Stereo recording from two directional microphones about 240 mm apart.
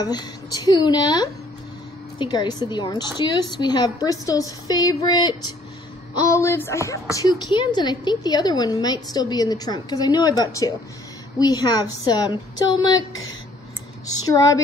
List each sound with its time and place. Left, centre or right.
0.0 s a woman's voice: centre
14.2 s speech: centre